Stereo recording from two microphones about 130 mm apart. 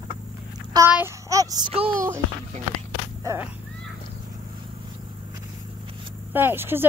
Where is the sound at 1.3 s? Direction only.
30° right (ahead or behind).